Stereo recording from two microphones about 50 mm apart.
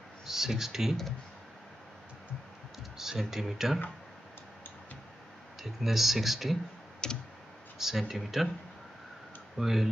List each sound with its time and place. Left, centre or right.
0.3 s speech: centre
3.0 s speech: centre
5.6 s speech: centre
7.0 s clicking: centre
7.8 s speech: centre
9.6 s speech: centre